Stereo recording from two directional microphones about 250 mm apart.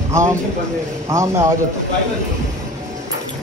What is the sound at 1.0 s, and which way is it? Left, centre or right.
Speech, centre.